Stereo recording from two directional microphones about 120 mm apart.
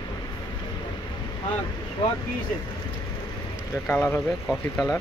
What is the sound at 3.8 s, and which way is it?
Speech, 25° left (ahead or behind).